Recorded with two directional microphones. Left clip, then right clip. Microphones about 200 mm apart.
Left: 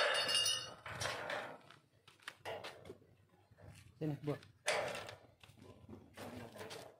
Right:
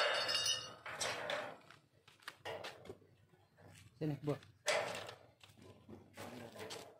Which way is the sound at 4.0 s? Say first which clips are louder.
Right 1 dB; 30° right (ahead or behind).